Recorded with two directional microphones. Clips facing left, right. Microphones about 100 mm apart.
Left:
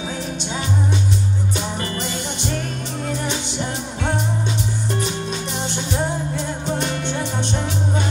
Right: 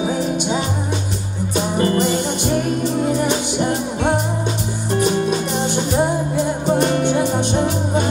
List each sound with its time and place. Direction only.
0.0 s music: 15° right (ahead or behind)
1.9 s music: 40° right (ahead or behind)
2.4 s music: 10° right (ahead or behind)
5.9 s music: 10° right (ahead or behind)
6.6 s music: 40° right (ahead or behind)
7.3 s music: 15° right (ahead or behind)